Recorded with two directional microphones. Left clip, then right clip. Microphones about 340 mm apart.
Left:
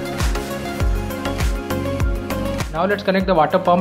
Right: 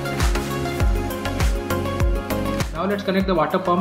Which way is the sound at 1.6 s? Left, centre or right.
Centre.